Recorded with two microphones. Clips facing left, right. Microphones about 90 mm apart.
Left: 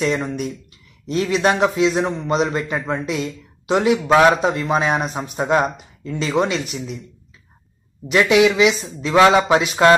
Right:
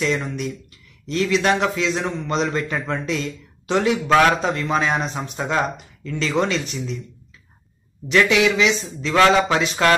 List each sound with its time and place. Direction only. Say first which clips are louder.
0.0 s a man's voice: left 2 dB; 20° left (ahead or behind)
8.1 s a man's voice: left 3 dB; 20° left (ahead or behind)